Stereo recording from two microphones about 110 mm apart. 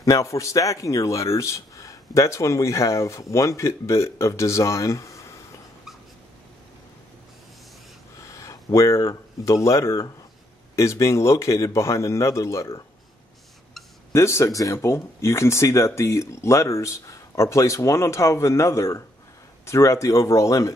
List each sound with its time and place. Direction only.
0.0 s speech: 30° left (ahead or behind)
8.2 s speech: 30° left (ahead or behind)
14.1 s speech: 25° left (ahead or behind)